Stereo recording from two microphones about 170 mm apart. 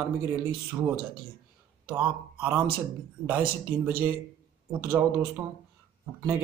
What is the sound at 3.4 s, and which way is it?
Speech, 60° right (ahead or behind).